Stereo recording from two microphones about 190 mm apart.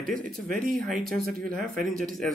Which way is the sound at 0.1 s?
45° right (ahead or behind).